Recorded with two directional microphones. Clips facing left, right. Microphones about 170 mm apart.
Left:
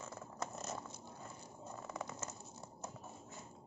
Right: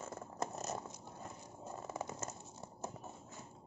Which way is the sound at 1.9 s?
25° right (ahead or behind).